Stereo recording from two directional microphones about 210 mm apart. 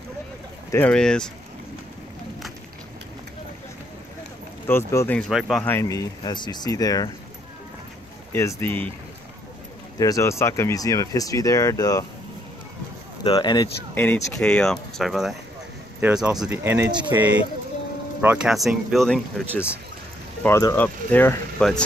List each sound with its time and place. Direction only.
0.7 s speech: 10° left (ahead or behind)
4.6 s speech: 10° left (ahead or behind)
5.7 s speech: 15° left (ahead or behind)
8.3 s speech: 10° left (ahead or behind)
9.9 s speech: 15° left (ahead or behind)
13.2 s speech: 20° left (ahead or behind)
13.9 s speech: 10° left (ahead or behind)
20.4 s speech: 10° left (ahead or behind)